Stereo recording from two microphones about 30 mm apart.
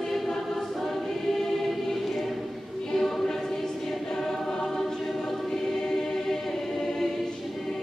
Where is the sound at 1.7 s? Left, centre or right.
Centre.